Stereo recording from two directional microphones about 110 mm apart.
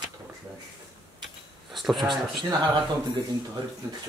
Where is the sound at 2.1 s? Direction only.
45° right (ahead or behind).